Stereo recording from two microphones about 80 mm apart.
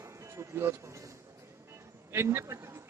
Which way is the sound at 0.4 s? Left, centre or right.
Right.